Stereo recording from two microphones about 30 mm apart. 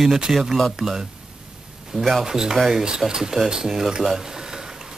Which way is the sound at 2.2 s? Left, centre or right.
Centre.